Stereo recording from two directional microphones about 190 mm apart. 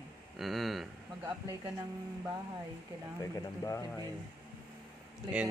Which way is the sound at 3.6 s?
15° left (ahead or behind).